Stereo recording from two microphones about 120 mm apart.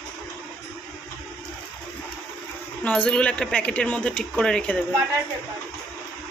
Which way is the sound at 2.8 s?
10° left (ahead or behind).